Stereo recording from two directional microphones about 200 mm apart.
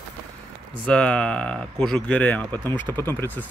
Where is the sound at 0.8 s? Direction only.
5° left (ahead or behind).